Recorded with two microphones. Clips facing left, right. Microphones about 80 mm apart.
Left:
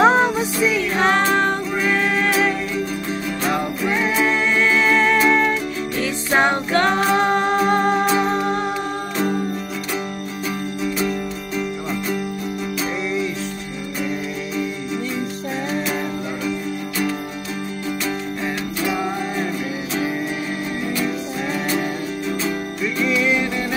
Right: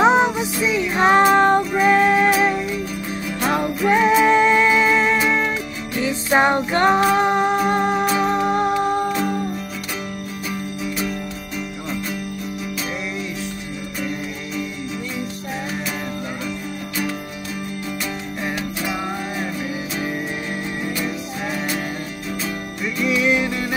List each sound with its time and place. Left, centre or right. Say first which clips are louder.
0.0 s music: even; centre
7.0 s music: right 1 dB; centre
22.9 s music: right 1 dB; centre